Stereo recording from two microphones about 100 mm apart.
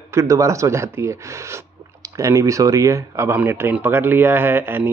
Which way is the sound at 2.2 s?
30° right (ahead or behind).